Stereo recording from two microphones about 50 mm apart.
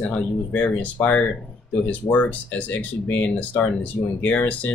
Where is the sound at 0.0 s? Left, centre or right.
Left.